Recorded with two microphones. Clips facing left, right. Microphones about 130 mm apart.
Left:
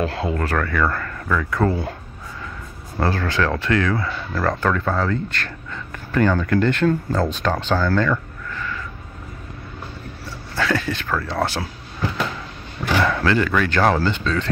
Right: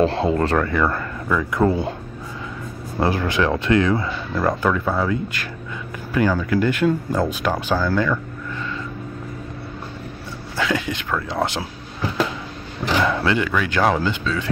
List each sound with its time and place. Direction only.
0.0 s speech: 30° right (ahead or behind)
3.0 s speech: 15° right (ahead or behind)
10.5 s speech: 15° right (ahead or behind)